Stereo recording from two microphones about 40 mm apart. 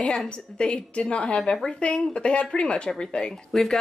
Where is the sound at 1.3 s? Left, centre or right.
Centre.